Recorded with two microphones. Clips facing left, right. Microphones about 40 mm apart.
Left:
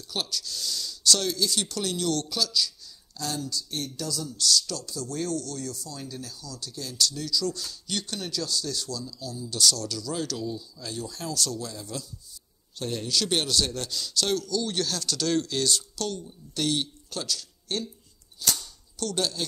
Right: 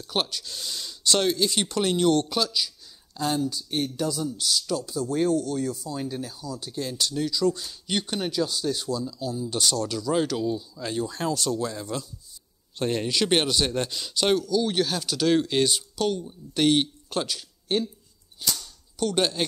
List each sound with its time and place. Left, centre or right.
0.0 s speech: right
16.3 s a man's voice: right